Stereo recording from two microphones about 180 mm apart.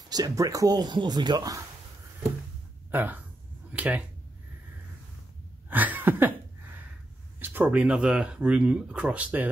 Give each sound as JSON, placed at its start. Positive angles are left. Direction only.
{"t": 0.1, "sound": "speech", "side_deg": -20}
{"t": 2.9, "sound": "speech", "side_deg": -10}
{"t": 5.7, "sound": "cough", "side_deg": -10}
{"t": 7.3, "sound": "speech", "side_deg": -10}